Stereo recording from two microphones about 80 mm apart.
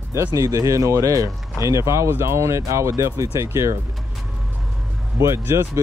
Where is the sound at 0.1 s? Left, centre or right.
Right.